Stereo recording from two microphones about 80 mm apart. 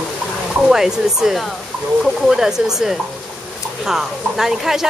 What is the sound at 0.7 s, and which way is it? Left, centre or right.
A woman's voice, centre.